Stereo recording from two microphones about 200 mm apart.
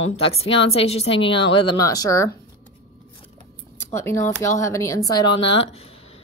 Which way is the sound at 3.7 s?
10° left (ahead or behind).